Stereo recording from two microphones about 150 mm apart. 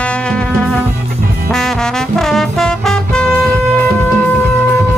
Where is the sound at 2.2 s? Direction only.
5° left (ahead or behind).